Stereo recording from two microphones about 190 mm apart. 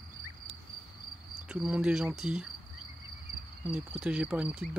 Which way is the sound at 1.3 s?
5° right (ahead or behind).